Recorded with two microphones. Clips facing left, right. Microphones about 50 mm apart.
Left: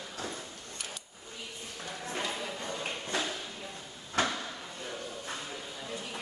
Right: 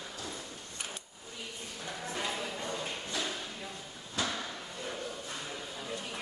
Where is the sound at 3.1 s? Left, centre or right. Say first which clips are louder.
Left 3 dB; left.